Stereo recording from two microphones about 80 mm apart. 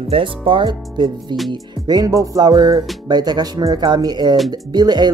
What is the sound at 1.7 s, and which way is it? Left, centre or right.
Speech, right.